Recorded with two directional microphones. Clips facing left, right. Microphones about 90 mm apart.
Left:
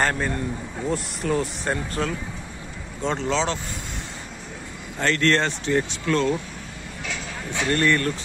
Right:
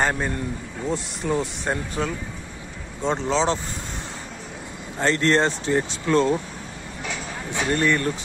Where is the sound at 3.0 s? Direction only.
15° right (ahead or behind).